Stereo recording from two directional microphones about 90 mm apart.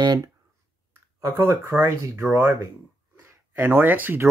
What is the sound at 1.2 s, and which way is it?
Speech, 35° right (ahead or behind).